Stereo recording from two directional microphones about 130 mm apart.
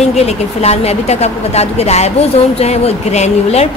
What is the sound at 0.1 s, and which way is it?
Speech, 55° left (ahead or behind).